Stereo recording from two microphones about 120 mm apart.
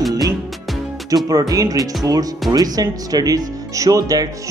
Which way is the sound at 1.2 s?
30° right (ahead or behind).